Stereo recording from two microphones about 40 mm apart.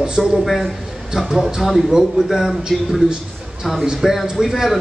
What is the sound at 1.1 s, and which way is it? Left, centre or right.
A man's voice, centre.